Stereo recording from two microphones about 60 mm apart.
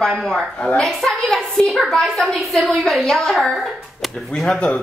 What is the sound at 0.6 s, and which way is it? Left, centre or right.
Speech, centre.